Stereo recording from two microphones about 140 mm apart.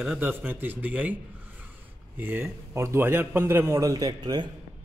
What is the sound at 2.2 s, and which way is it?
A man's voice, 15° right (ahead or behind).